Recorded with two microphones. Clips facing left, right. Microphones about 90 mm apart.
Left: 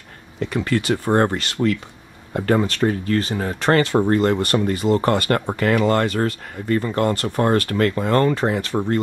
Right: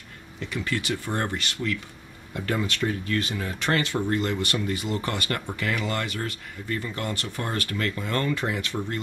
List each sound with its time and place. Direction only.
0.4 s speech: 45° left (ahead or behind)